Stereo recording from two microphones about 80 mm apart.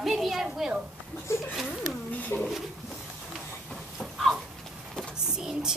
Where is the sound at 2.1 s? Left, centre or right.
Centre.